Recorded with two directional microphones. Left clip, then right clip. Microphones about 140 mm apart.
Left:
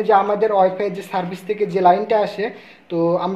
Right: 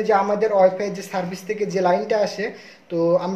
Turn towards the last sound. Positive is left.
turn(degrees=20)  # may be behind; listen again after turning